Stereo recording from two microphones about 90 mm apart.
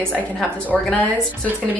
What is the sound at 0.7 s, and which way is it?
Speech, 10° right (ahead or behind).